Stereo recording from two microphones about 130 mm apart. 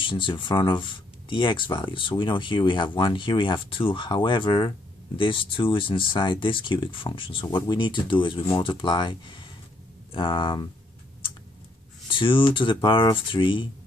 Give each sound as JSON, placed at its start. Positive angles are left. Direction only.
{"t": 0.0, "sound": "speech", "side_deg": 40}
{"t": 12.1, "sound": "speech", "side_deg": 40}